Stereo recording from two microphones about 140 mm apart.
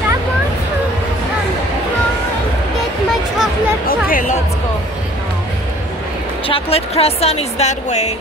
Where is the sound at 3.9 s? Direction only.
80° left.